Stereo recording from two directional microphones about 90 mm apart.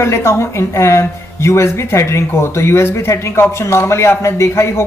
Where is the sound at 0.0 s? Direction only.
30° left (ahead or behind).